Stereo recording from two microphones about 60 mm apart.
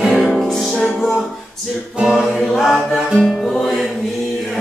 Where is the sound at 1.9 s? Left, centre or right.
Centre.